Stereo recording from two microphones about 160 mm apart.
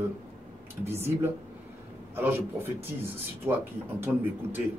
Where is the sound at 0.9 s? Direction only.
15° right (ahead or behind).